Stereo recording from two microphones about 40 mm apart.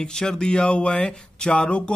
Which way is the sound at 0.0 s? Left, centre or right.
Centre.